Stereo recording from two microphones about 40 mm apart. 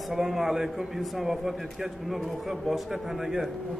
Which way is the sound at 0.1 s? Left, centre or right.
Centre.